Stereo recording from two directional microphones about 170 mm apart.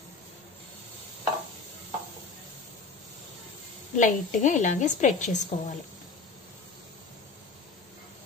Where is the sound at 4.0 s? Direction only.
45° left (ahead or behind).